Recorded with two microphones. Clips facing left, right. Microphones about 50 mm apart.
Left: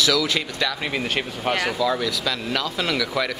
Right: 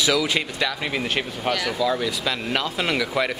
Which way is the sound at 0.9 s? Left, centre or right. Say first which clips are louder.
Even; centre.